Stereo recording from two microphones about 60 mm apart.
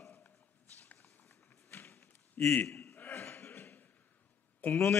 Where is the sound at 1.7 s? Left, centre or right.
Left.